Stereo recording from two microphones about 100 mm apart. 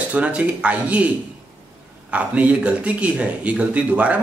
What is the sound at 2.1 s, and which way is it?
A man's voice, 15° right (ahead or behind).